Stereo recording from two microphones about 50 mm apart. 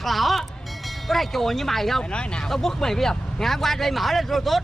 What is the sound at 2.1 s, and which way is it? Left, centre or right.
Speech, centre.